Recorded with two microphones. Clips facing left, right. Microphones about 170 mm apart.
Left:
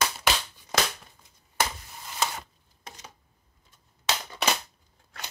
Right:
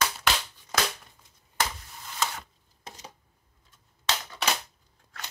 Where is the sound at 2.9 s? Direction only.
30° right (ahead or behind).